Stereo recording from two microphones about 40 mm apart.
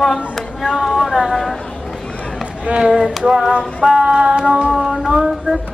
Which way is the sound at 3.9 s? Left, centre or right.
Right.